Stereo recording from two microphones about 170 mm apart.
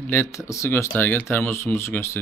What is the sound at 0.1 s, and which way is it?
A man's voice, 15° left (ahead or behind).